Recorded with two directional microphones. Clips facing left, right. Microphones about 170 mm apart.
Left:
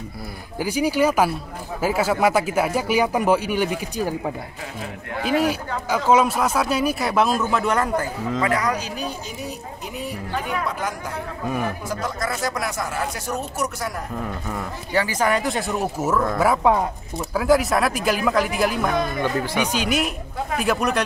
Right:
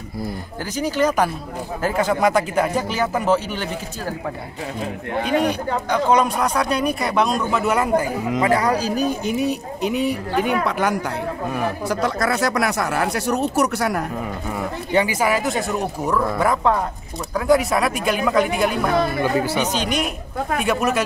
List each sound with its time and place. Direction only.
0.6 s speech: 10° left (ahead or behind)
5.4 s speech: 5° left (ahead or behind); by 8.5 s 15° right (ahead or behind)
8.5 s a man's voice: 30° right (ahead or behind)
9.2 s speech: 65° right (ahead or behind)
14.9 s speech: 20° right (ahead or behind)
15.1 s speech: 5° right (ahead or behind)